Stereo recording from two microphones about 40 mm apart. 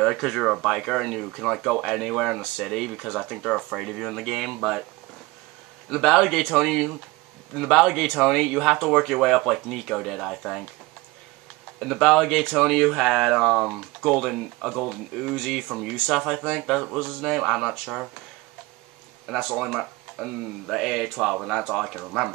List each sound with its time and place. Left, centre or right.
0.0 s speech: centre
5.9 s speech: centre
12.0 s speech: centre
13.7 s speech: centre
16.4 s speech: centre
16.8 s speech: centre
19.2 s speech: centre